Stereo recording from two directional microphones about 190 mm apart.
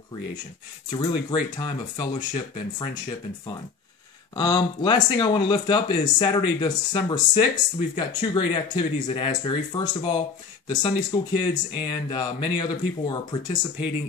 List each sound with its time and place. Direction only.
0.9 s speech: 25° left (ahead or behind)
4.4 s speech: 20° left (ahead or behind)